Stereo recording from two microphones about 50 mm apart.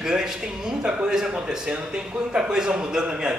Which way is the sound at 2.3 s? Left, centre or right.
Centre.